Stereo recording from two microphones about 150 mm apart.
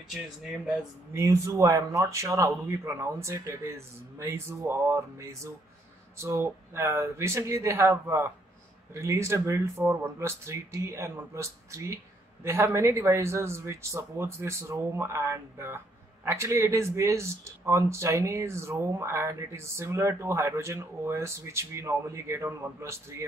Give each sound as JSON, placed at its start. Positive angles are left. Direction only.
{"t": 1.1, "sound": "speech", "side_deg": -20}